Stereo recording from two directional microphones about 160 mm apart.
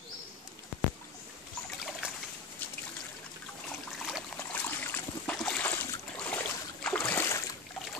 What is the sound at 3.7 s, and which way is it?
Trickle, centre (ahead or behind).